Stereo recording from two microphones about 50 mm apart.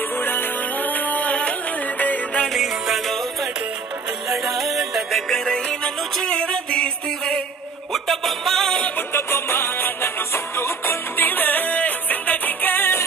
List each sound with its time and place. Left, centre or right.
0.2 s music: left
2.4 s music: centre
4.3 s music: centre
5.3 s music: centre
6.2 s music: centre
7.9 s music: centre
8.9 s music: left
11.1 s music: left